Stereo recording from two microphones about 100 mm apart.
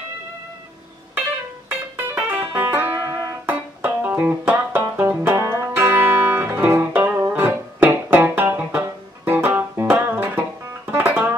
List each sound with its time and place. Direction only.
2.0 s music: 20° right (ahead or behind)